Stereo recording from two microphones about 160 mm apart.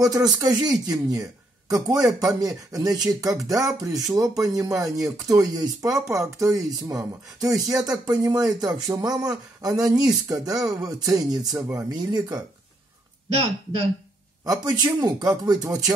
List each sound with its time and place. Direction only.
0.0 s speech: 20° right (ahead or behind)
14.4 s a man's voice: 25° right (ahead or behind)